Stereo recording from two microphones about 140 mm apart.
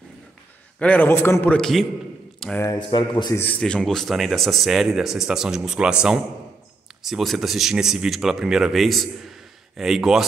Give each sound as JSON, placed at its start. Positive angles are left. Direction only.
{"t": 0.7, "sound": "a man's voice", "side_deg": 10}
{"t": 1.6, "sound": "speech", "side_deg": 0}
{"t": 2.8, "sound": "a man's voice", "side_deg": 35}
{"t": 3.3, "sound": "speech", "side_deg": 10}
{"t": 7.0, "sound": "speech", "side_deg": 0}